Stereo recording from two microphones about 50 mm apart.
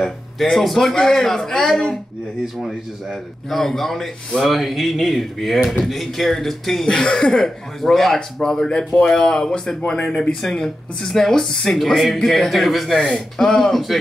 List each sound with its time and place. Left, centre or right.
0.0 s a man's voice: centre
11.7 s a man's voice: centre